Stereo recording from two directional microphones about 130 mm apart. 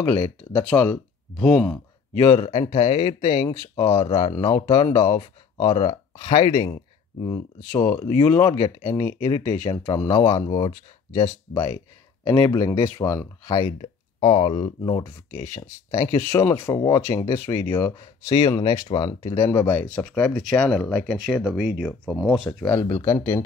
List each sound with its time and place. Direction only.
0.0 s speech: 15° left (ahead or behind)
2.3 s speech: 55° left (ahead or behind)
3.3 s speech: 30° left (ahead or behind)
5.8 s speech: 55° left (ahead or behind)
6.6 s speech: 35° left (ahead or behind)
7.7 s speech: 15° left (ahead or behind)
13.7 s a sound: 55° left (ahead or behind)
14.8 s speech: 25° left (ahead or behind)
16.7 s speech: 30° left (ahead or behind)
18.2 s speech: 30° left (ahead or behind); by 22.8 s 5° left (ahead or behind)
22.8 s speech: 20° left (ahead or behind)